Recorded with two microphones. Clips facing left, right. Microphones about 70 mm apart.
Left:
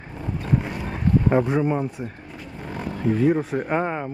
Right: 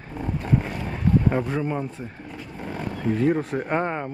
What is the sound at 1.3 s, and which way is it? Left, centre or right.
Speech, centre.